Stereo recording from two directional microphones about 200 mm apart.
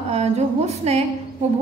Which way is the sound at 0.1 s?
30° right (ahead or behind).